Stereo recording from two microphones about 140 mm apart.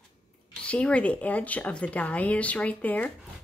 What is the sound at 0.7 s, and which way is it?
Speech, 10° left (ahead or behind).